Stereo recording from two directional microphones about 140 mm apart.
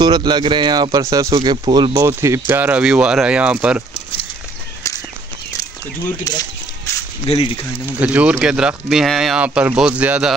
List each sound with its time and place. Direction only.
0.0 s speech: 30° right (ahead or behind)
2.0 s speech: 20° right (ahead or behind)
6.3 s speech: 25° left (ahead or behind)
7.2 s speech: 40° left (ahead or behind)
7.8 s speech: 10° right (ahead or behind)